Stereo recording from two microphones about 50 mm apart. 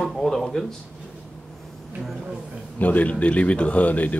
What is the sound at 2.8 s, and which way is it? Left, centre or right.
Speech, left.